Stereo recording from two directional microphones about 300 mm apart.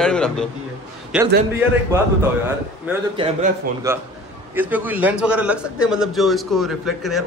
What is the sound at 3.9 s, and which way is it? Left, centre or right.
A man's voice, centre.